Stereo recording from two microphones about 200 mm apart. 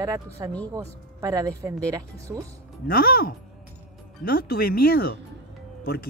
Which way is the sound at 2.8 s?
45° left (ahead or behind).